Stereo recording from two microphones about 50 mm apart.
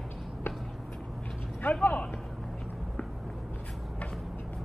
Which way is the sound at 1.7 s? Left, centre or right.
Left.